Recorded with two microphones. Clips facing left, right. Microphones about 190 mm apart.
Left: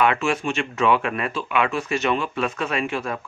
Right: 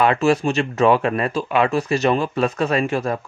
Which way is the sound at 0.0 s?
35° right (ahead or behind).